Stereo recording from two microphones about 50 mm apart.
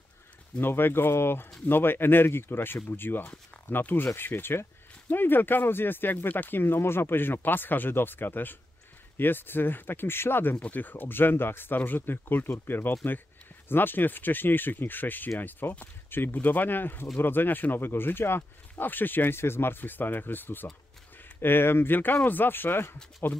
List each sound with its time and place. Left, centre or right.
0.6 s speech: left
10.5 s speech: left